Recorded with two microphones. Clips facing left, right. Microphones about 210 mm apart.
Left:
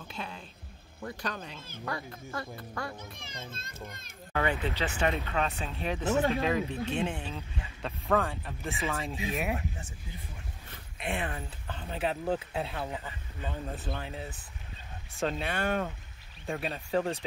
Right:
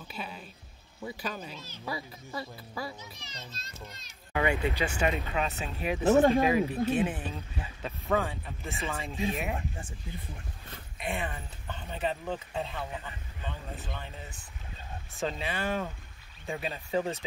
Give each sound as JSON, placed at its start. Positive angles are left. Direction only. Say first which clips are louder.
{"t": 0.1, "sound": "speech", "louder": "right 1 dB", "side_deg": -5}
{"t": 3.0, "sound": "a child's voice", "louder": "left 3 dB", "side_deg": 50}
{"t": 4.3, "sound": "speech", "louder": "right 2 dB", "side_deg": -15}
{"t": 6.0, "sound": "speech", "louder": "right 6 dB", "side_deg": -50}
{"t": 6.4, "sound": "speech", "louder": "right 4 dB", "side_deg": -10}
{"t": 11.0, "sound": "speech", "louder": "left 1 dB", "side_deg": 0}
{"t": 15.1, "sound": "speech", "louder": "left 2 dB", "side_deg": 0}